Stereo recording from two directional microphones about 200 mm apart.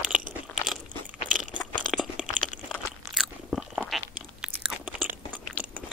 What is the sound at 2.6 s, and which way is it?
Crunch, centre (ahead or behind).